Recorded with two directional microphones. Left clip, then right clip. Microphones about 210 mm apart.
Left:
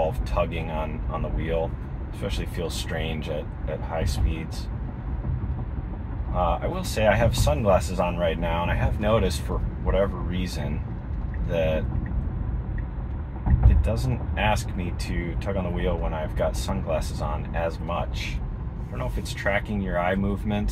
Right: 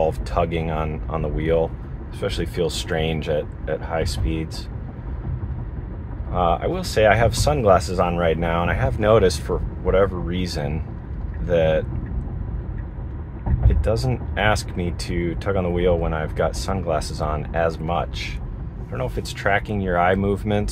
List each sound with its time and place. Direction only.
0.3 s speech: 55° right (ahead or behind)
6.3 s speech: 50° right (ahead or behind)
13.8 s speech: 55° right (ahead or behind)